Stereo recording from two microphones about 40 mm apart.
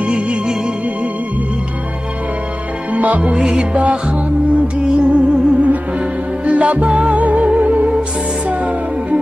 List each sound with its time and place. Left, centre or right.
2.9 s music: right